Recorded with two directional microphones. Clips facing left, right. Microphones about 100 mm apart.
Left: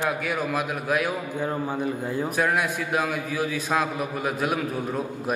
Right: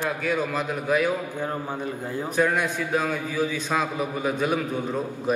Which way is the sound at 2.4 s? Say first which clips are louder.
Right 3 dB; 5° left (ahead or behind).